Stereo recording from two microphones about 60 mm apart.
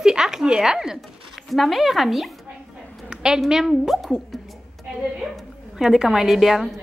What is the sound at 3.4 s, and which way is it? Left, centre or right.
Speech, centre.